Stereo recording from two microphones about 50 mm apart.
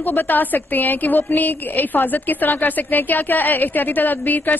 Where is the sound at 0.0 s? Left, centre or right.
Left.